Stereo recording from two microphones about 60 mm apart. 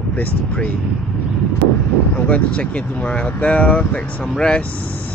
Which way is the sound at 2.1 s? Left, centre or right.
Left.